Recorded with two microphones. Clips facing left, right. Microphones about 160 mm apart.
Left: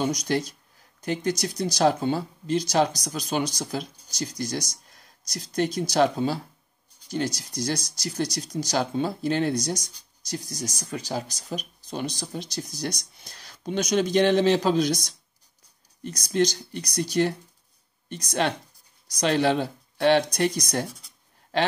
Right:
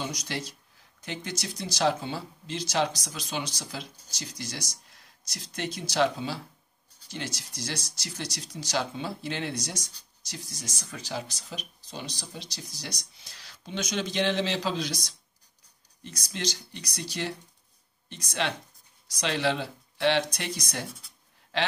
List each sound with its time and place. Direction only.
0.3 s speech: 45° left (ahead or behind)